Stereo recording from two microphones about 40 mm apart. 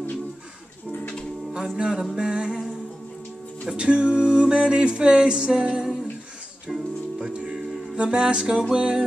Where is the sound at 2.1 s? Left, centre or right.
Right.